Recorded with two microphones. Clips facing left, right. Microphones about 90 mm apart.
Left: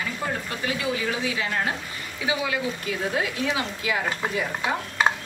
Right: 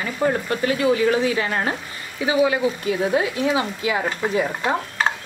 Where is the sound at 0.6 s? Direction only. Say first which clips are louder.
Right 9 dB; 45° right (ahead or behind).